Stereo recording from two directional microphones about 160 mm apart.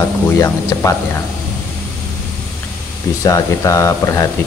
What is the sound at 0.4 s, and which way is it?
Speech, 20° left (ahead or behind).